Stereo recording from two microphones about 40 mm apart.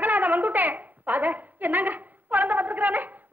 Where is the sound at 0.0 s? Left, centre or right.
Right.